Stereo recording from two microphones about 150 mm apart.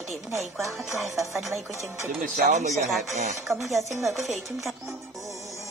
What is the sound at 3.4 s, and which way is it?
A woman's voice, centre (ahead or behind).